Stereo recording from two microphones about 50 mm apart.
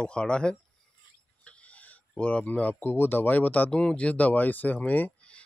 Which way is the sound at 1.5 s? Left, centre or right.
Left.